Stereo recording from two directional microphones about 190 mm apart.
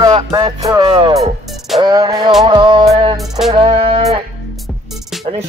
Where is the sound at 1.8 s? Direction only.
20° right (ahead or behind).